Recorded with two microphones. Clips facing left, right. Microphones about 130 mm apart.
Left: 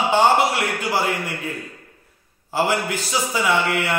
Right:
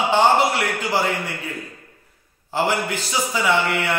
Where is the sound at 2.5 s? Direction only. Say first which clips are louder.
Even; 15° left (ahead or behind).